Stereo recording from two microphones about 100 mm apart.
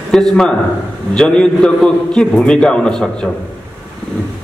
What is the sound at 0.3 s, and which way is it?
A man's voice, 5° left (ahead or behind).